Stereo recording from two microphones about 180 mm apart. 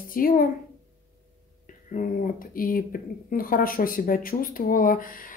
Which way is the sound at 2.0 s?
50° left (ahead or behind).